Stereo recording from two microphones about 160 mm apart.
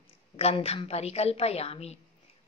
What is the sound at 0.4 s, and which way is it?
A woman's voice, 40° left (ahead or behind).